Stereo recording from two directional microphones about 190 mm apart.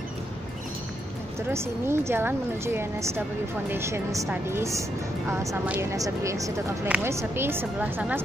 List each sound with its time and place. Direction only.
1.5 s speech: 15° right (ahead or behind)